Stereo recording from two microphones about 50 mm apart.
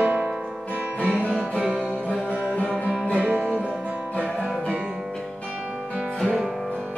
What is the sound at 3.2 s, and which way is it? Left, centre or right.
Music, right.